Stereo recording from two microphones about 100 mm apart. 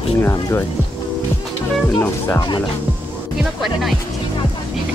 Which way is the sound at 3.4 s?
5° right (ahead or behind).